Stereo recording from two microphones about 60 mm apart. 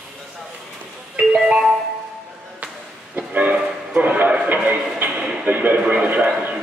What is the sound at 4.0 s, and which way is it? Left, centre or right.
A man's voice, right.